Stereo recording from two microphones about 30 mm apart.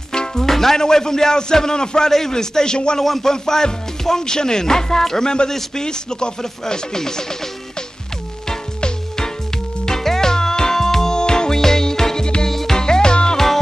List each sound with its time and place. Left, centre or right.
0.1 s music: left
0.5 s music: centre
0.7 s speech: left
3.0 s speech: centre
9.8 s music: centre
11.1 s music: left
12.7 s music: left